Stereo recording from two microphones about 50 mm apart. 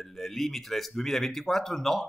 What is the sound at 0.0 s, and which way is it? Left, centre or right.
Speech, centre.